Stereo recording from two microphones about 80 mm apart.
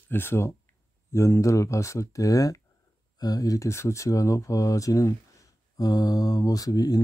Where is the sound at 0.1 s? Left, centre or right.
Left.